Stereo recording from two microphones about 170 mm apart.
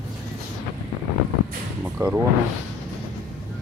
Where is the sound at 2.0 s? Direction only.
20° right (ahead or behind).